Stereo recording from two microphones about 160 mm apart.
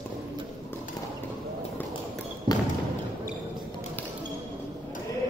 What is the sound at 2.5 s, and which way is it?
Basketball bounce, 25° right (ahead or behind).